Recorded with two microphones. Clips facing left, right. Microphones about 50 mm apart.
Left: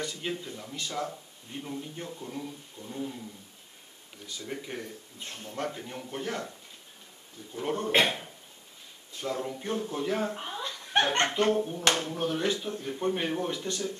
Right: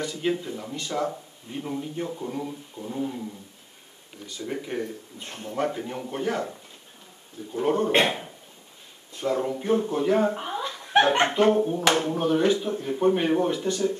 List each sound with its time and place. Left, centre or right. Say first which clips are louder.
0.0 s a man's voice: right 7 dB; centre
4.4 s a man's voice: right 7 dB; centre
7.5 s a man's voice: right 8 dB; centre
9.2 s a man's voice: right 7 dB; centre